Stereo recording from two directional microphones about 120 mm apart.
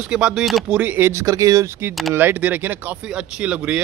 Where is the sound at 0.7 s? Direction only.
15° right (ahead or behind).